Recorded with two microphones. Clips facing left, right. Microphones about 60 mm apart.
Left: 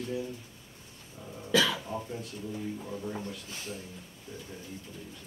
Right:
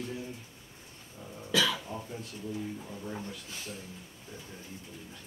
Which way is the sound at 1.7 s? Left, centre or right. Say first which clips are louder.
Left 2 dB; centre.